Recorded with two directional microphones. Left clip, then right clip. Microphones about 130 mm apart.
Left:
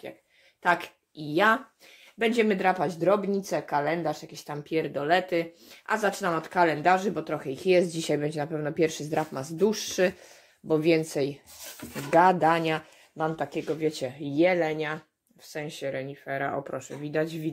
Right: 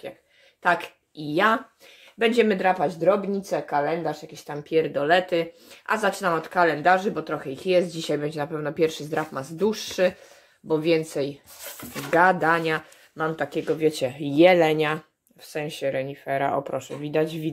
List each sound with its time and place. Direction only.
1.3 s speech: 5° left (ahead or behind)
2.5 s speech: 20° left (ahead or behind)
4.6 s speech: 5° left (ahead or behind)
6.4 s speech: 25° left (ahead or behind)
13.3 s speech: centre (ahead or behind)
13.7 s speech: 20° right (ahead or behind)
15.6 s speech: 5° right (ahead or behind)